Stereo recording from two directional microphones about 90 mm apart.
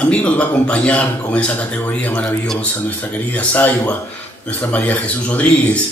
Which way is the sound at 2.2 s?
5° left (ahead or behind).